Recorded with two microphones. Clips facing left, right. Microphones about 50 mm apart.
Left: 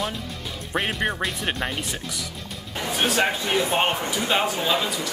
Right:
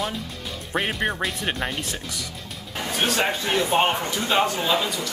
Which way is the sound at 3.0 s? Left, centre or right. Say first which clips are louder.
Left 1 dB; centre.